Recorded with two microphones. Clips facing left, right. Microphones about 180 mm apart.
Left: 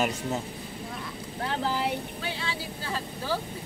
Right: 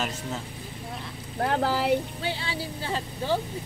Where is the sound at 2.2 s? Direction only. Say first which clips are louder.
Right 3 dB; 30° right (ahead or behind).